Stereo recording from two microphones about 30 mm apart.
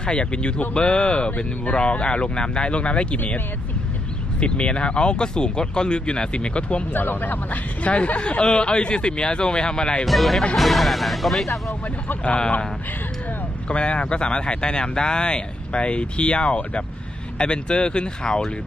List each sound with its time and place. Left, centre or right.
0.0 s speech: left
4.4 s speech: left
6.9 s speech: left
7.9 s speech: left
10.0 s speech: centre
12.2 s speech: left
13.7 s speech: left